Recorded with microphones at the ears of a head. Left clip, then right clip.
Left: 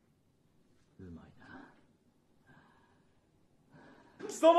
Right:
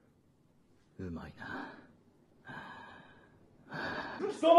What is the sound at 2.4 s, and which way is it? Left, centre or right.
Gasp, right.